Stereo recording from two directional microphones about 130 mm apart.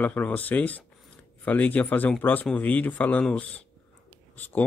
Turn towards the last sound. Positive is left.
turn(degrees=15)  # may be behind; listen again after turning